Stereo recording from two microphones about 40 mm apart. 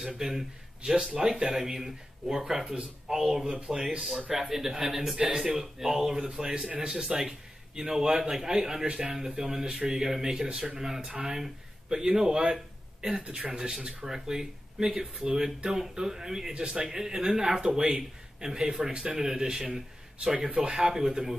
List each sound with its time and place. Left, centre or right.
0.0 s speech: centre
1.8 s speech: centre
6.9 s speech: centre
9.1 s speech: centre
11.2 s speech: centre